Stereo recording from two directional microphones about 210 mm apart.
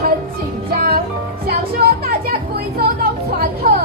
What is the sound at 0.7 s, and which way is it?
Speech, 45° right (ahead or behind).